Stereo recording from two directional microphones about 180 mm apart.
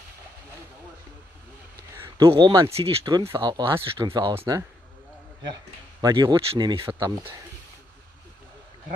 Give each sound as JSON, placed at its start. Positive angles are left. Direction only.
{"t": 2.1, "sound": "speech", "side_deg": -25}